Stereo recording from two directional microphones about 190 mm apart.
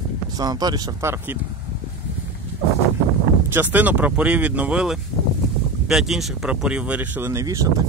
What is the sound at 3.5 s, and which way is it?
Speech, 10° right (ahead or behind).